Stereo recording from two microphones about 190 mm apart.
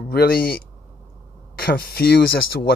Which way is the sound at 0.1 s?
55° left (ahead or behind).